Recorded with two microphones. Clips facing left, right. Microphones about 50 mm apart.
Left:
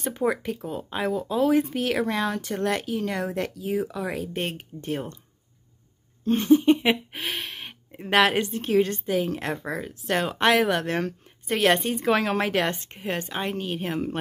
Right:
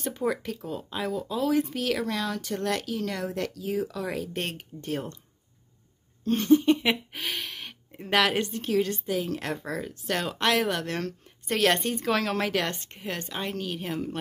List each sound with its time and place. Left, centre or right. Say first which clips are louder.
0.0 s speech: left 3 dB; left
6.2 s speech: left 2 dB; centre
7.2 s gasp: left 2 dB; centre
7.6 s speech: left 3 dB; centre
9.4 s speech: left 2 dB; centre; by 14.1 s left